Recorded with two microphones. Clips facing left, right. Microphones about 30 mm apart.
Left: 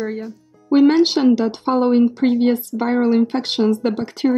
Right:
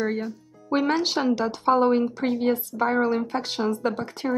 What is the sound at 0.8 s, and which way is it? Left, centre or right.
Speech, left.